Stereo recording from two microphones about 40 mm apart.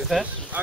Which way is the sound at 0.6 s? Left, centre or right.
Right.